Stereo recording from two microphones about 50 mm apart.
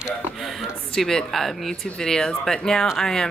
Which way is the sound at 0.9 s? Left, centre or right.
Centre.